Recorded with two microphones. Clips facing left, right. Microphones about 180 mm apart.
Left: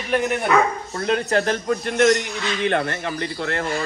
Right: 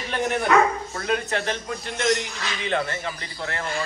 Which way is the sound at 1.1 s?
40° left (ahead or behind).